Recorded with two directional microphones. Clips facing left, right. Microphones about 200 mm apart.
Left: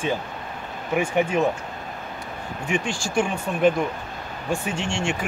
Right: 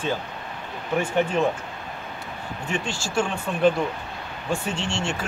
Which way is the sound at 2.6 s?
10° left (ahead or behind).